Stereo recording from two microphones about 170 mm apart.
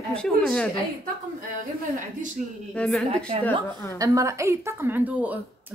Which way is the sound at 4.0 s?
20° right (ahead or behind).